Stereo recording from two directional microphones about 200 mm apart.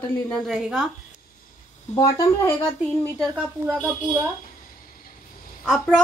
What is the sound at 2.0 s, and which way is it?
Speech, 15° left (ahead or behind).